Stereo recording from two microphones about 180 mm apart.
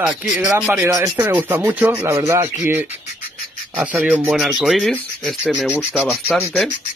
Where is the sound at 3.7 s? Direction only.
10° right (ahead or behind).